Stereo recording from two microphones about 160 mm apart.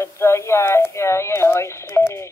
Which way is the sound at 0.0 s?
15° left (ahead or behind).